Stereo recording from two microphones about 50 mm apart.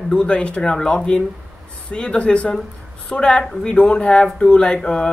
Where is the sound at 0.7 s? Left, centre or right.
Centre.